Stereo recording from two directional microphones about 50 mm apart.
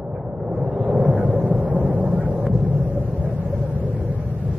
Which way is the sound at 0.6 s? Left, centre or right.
Right.